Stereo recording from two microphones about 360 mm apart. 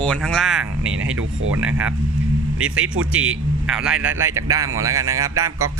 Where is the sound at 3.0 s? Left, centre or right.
Centre.